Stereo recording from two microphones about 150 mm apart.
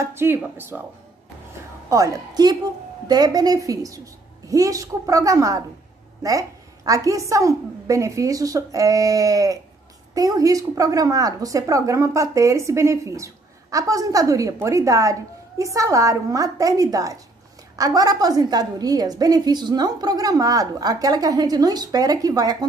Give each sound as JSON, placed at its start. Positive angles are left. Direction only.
{"t": 0.0, "sound": "speech", "side_deg": -15}
{"t": 1.9, "sound": "a woman's voice", "side_deg": -25}